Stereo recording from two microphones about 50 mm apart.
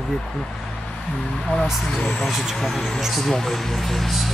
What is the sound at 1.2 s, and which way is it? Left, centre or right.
Speech, centre.